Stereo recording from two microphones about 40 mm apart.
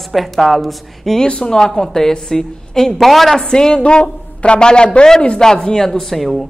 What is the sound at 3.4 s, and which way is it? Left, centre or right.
A man's voice, centre.